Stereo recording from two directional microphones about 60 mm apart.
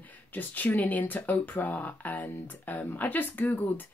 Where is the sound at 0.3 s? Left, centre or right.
Left.